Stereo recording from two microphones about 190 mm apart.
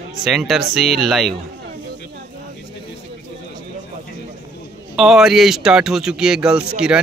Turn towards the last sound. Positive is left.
turn(degrees=-5)  # may be behind; listen again after turning